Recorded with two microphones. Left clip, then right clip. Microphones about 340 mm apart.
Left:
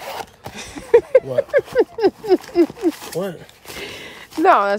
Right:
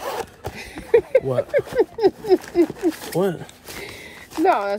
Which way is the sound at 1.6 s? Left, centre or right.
Left.